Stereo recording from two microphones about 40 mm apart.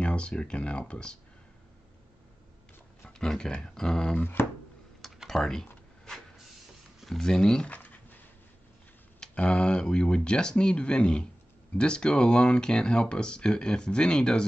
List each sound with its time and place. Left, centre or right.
0.0 s speech: left
3.1 s speech: centre
4.2 s speech: left
5.0 s typing: centre
7.2 s speech: centre
7.6 s a sound: left
9.5 s speech: left